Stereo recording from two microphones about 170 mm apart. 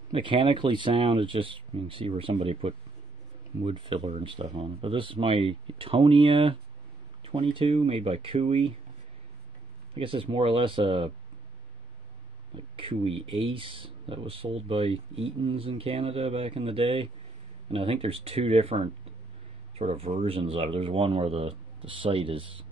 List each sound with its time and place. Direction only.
0.1 s speech: 30° right (ahead or behind)
9.9 s speech: 30° right (ahead or behind)
12.5 s speech: 30° right (ahead or behind)